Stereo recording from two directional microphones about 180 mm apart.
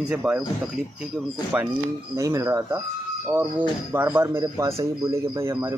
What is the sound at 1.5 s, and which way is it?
Speech, 5° right (ahead or behind).